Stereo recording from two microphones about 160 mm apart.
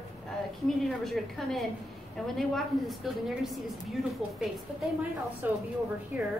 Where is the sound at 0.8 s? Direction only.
Centre (ahead or behind).